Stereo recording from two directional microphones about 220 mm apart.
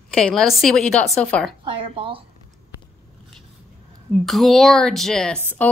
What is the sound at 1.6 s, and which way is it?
Speech, 25° right (ahead or behind).